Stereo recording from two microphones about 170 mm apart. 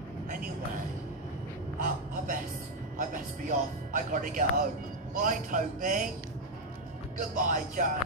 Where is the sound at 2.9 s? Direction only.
50° right (ahead or behind).